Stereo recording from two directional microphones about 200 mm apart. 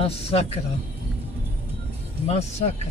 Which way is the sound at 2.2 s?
30° left (ahead or behind).